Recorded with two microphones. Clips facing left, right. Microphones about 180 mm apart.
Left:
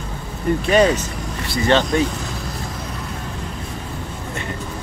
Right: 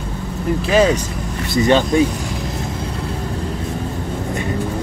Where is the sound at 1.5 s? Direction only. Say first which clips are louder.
Right 3 dB; 15° right (ahead or behind).